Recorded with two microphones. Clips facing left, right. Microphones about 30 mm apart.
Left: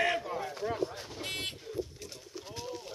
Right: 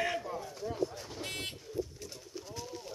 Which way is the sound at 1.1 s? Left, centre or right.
Centre.